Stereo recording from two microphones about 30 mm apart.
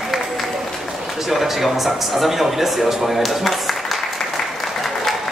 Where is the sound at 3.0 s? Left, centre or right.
Centre.